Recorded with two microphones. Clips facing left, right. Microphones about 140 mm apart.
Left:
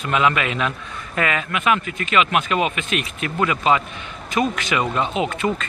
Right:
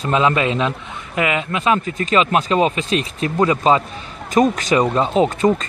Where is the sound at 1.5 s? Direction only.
30° right (ahead or behind).